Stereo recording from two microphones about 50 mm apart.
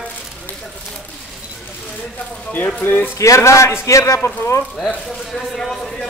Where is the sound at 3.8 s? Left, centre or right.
Left.